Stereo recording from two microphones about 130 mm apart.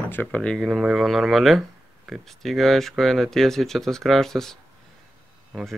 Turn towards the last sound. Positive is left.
turn(degrees=0)  # may be behind; listen again after turning